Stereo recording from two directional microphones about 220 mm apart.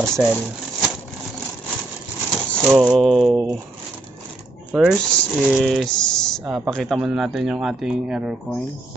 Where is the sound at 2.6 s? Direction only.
Centre (ahead or behind).